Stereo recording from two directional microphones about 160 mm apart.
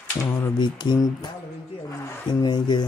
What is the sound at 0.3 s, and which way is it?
Speech, 25° left (ahead or behind).